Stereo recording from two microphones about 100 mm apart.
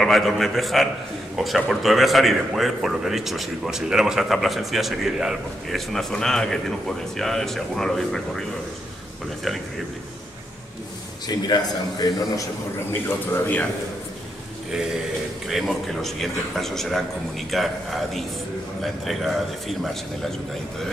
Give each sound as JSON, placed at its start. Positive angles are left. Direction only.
{"t": 0.0, "sound": "a man's voice", "side_deg": 0}
{"t": 11.2, "sound": "a man's voice", "side_deg": 40}
{"t": 13.3, "sound": "a man's voice", "side_deg": 20}
{"t": 15.5, "sound": "a man's voice", "side_deg": 0}